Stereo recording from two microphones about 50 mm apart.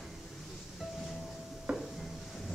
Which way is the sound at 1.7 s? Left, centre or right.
Right.